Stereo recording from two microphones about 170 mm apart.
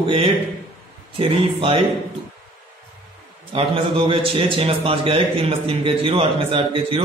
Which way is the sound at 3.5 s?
35° right (ahead or behind).